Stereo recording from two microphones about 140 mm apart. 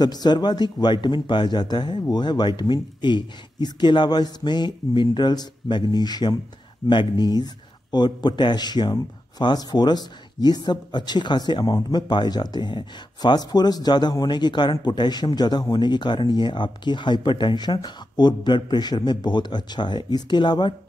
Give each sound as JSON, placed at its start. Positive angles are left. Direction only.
{"t": 0.0, "sound": "speech", "side_deg": 30}